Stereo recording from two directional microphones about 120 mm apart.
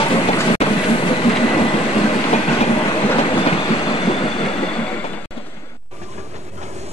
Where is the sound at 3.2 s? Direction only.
50° left (ahead or behind).